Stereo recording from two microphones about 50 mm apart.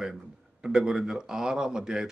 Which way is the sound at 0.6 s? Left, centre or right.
Centre.